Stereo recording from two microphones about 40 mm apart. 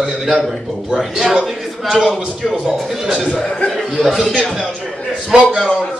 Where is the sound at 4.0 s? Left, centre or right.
Centre.